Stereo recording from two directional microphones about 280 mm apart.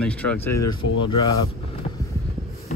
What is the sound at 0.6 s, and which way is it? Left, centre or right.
Speech, left.